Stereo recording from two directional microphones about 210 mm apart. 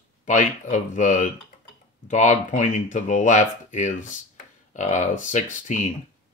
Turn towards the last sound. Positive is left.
turn(degrees=35)  # may be behind; listen again after turning